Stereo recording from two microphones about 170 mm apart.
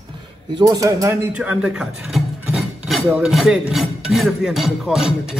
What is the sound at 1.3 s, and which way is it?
Speech, 5° right (ahead or behind).